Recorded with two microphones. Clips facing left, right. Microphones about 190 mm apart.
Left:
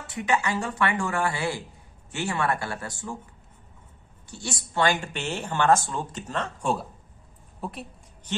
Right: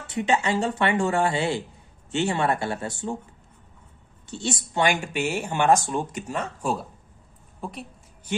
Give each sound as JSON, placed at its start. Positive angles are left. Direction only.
{"t": 0.0, "sound": "speech", "side_deg": -25}
{"t": 4.3, "sound": "a woman's voice", "side_deg": -25}